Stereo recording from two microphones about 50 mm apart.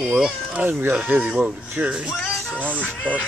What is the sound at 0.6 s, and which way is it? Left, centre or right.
Speech, right.